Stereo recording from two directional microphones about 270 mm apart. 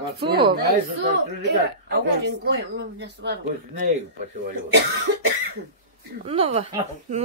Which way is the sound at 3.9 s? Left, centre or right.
Right.